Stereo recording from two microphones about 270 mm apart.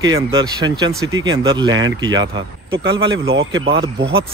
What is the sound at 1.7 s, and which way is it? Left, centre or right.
Speech, right.